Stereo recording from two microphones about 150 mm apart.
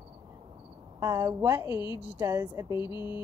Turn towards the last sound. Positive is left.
turn(degrees=30)  # may be behind; listen again after turning